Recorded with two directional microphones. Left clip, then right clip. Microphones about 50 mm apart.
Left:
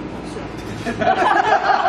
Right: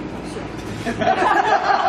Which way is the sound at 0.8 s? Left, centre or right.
Centre.